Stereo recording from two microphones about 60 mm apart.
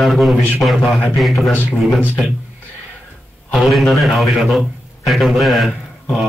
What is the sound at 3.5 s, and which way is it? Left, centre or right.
A man's voice, centre.